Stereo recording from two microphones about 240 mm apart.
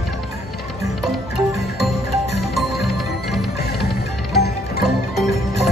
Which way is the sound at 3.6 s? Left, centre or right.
Left.